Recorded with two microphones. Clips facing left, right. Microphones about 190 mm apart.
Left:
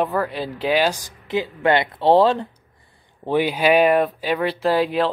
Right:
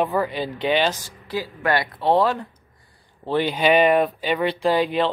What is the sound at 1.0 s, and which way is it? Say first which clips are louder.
Speech: left 4 dB; 20° left (ahead or behind).